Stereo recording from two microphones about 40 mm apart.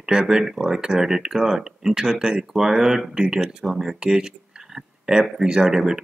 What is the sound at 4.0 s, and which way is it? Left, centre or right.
Speech, right.